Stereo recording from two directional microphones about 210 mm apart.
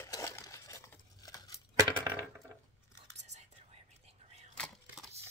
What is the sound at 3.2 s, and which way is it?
Whispering, 30° right (ahead or behind).